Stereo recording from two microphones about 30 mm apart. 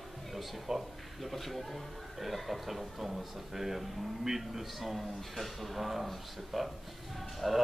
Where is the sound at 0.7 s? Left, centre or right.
Centre.